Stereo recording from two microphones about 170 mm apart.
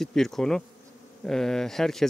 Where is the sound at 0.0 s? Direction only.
Centre (ahead or behind).